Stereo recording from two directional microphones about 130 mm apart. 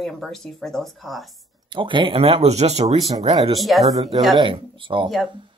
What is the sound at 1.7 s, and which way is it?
Speech, 40° right (ahead or behind).